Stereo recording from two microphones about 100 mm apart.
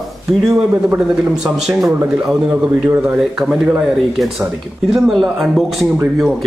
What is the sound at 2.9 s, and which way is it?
Speech, 20° right (ahead or behind).